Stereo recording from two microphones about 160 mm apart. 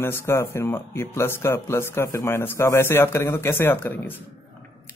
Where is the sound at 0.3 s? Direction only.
15° left (ahead or behind).